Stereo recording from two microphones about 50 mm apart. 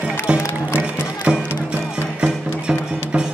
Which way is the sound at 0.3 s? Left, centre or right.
Centre.